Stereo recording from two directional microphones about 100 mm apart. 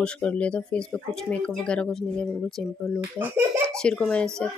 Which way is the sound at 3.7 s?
5° left (ahead or behind).